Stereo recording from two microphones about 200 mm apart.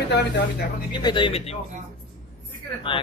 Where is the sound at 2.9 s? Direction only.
25° left (ahead or behind).